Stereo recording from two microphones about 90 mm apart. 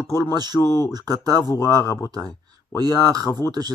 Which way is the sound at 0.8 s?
45° right (ahead or behind).